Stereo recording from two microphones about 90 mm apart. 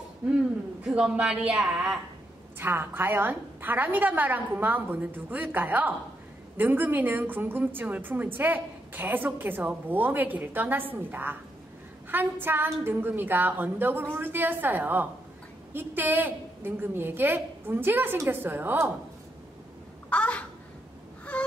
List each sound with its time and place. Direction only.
0.8 s a man's voice: 5° right (ahead or behind)
2.6 s a woman's voice: 25° right (ahead or behind)
20.1 s a sound: 15° left (ahead or behind)
21.3 s wail: 15° left (ahead or behind)